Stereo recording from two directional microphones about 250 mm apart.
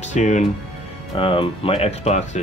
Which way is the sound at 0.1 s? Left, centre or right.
Left.